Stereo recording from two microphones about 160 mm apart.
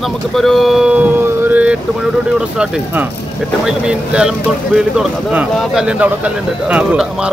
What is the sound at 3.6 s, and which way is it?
Speech, 5° right (ahead or behind).